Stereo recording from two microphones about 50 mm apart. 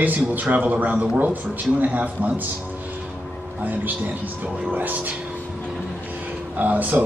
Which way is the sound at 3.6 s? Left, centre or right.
Right.